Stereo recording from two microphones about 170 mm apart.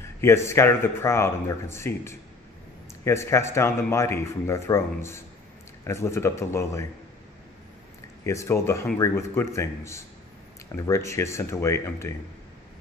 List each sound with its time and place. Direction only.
0.2 s speech: 15° left (ahead or behind)
8.2 s speech: 15° left (ahead or behind)